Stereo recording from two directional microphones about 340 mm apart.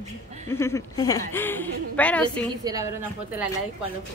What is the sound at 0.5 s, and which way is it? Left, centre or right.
A woman's voice, centre.